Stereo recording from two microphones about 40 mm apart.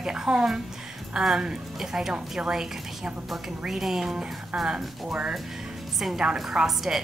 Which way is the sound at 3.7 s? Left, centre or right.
Centre.